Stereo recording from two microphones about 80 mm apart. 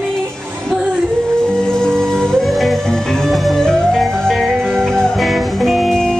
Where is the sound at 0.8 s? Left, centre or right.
Centre.